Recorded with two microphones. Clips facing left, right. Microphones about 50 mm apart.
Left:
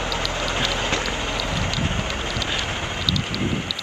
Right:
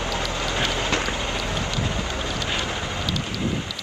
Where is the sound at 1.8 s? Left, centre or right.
Left.